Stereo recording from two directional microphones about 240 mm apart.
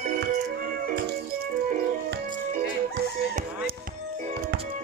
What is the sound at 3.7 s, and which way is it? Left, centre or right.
Music, right.